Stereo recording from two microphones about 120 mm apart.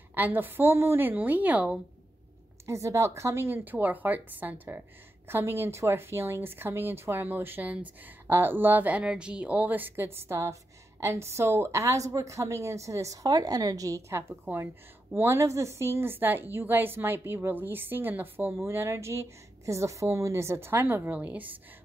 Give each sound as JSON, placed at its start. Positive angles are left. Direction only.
{"t": 0.1, "sound": "speech", "side_deg": -15}
{"t": 2.6, "sound": "a woman's voice", "side_deg": -25}